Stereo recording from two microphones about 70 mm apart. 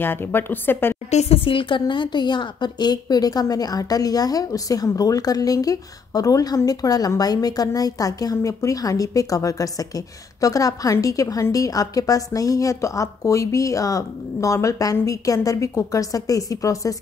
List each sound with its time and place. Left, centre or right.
0.0 s a woman's voice: left
2.0 s a woman's voice: left